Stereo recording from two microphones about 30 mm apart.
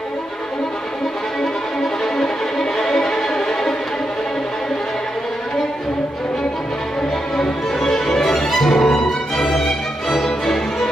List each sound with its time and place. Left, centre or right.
1.4 s violin: centre
7.8 s music: centre
8.5 s violin: centre
10.2 s music: centre